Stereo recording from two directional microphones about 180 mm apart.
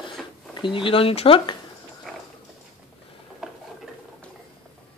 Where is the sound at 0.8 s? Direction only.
30° left (ahead or behind).